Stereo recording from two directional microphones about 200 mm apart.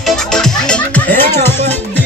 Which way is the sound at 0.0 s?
Centre (ahead or behind).